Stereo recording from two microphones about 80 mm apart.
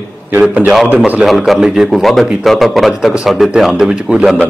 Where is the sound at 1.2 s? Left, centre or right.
Centre.